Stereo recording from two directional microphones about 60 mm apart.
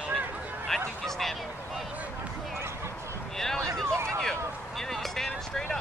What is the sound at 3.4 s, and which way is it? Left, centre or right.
Speech, centre.